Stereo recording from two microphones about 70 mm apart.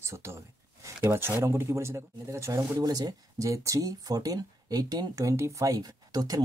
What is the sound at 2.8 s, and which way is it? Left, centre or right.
Speech, right.